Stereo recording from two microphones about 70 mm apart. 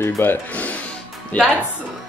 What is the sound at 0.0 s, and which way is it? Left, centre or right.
Speech, left.